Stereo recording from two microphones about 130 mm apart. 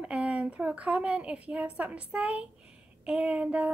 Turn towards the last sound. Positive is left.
turn(degrees=-10)  # may be behind; listen again after turning